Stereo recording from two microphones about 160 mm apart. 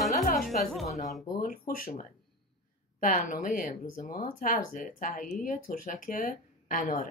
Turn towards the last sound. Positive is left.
turn(degrees=55)  # may be behind; listen again after turning